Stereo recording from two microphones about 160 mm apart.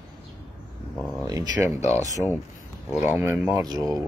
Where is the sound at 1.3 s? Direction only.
20° right (ahead or behind).